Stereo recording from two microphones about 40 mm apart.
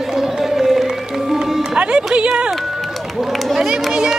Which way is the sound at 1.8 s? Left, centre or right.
Right.